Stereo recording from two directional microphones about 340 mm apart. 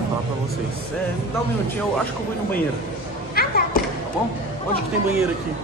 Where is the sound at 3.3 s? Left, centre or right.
Left.